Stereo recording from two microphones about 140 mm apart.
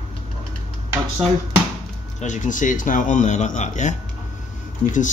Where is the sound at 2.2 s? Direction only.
60° left (ahead or behind).